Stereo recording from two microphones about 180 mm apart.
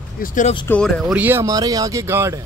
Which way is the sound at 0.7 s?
5° left (ahead or behind).